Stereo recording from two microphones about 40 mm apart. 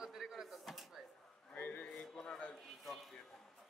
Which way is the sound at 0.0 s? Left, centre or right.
Centre.